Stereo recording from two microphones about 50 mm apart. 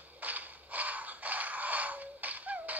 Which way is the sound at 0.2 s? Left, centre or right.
Right.